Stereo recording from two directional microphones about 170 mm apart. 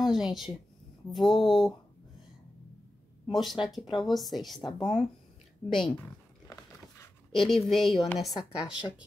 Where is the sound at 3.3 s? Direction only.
Centre (ahead or behind).